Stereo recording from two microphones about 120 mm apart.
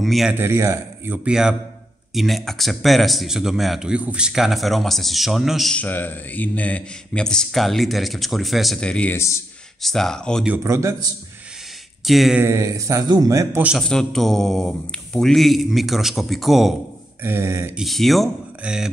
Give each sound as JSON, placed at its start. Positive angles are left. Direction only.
{"t": 0.0, "sound": "speech", "side_deg": 0}
{"t": 0.3, "sound": "a man's voice", "side_deg": -20}
{"t": 1.1, "sound": "speech", "side_deg": -10}
{"t": 5.8, "sound": "speech", "side_deg": 15}
{"t": 9.1, "sound": "speech", "side_deg": 25}
{"t": 9.8, "sound": "speech", "side_deg": 0}
{"t": 10.4, "sound": "a man's voice", "side_deg": -20}
{"t": 12.0, "sound": "speech", "side_deg": 0}
{"t": 12.4, "sound": "a man's voice", "side_deg": -25}
{"t": 13.7, "sound": "speech", "side_deg": 5}
{"t": 17.2, "sound": "a man's voice", "side_deg": -20}
{"t": 17.7, "sound": "speech", "side_deg": 0}